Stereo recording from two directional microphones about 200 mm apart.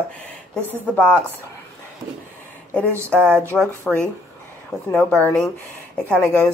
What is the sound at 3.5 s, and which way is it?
Speech, centre (ahead or behind).